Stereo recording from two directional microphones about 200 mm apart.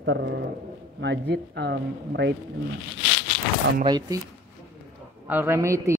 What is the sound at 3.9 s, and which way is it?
Speech, 20° right (ahead or behind).